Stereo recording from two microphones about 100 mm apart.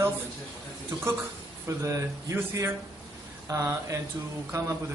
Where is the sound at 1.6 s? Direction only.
30° right (ahead or behind).